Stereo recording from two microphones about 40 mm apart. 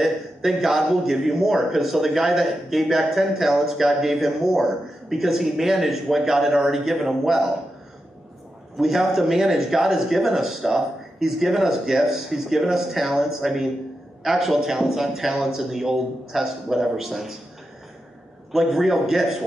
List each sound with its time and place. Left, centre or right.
0.0 s a man's voice: centre
8.7 s a man's voice: centre
18.5 s a man's voice: centre